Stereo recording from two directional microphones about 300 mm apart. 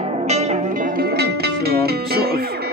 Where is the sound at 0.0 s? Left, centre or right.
Right.